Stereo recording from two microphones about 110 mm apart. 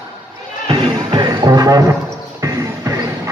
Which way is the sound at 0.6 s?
45° right (ahead or behind).